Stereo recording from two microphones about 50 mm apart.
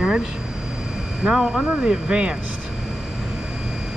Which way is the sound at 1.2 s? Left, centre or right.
Centre.